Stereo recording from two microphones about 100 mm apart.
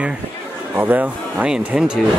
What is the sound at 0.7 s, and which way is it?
Speech, 20° right (ahead or behind).